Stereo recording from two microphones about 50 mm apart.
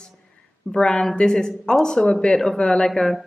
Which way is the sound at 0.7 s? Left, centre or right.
Centre.